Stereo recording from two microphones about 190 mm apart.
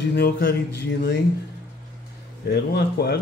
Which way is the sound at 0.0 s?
60° left (ahead or behind).